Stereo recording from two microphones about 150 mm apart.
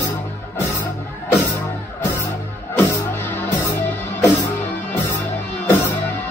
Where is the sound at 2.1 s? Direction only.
15° left (ahead or behind).